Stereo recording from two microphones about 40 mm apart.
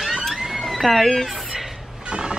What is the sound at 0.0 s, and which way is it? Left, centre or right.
Cat, centre.